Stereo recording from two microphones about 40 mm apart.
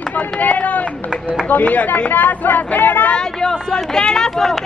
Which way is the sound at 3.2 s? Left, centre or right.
Centre.